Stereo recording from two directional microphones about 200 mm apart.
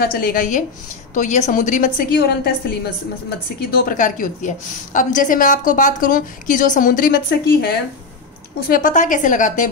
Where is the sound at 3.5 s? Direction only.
45° left (ahead or behind).